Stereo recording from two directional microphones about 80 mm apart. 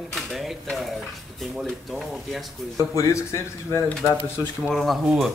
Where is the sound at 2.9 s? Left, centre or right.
Left.